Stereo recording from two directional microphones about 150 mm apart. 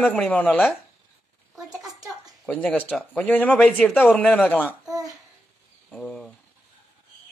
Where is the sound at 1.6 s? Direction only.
25° right (ahead or behind).